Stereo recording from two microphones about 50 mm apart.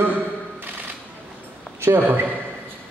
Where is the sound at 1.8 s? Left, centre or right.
Right.